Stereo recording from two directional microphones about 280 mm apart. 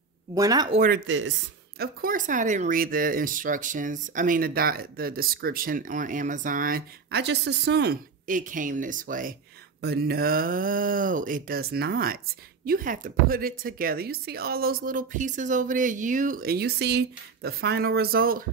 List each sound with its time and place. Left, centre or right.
0.3 s speech: centre
0.7 s speech: right
1.8 s speech: right